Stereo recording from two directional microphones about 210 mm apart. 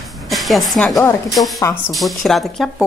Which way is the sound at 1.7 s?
Centre (ahead or behind).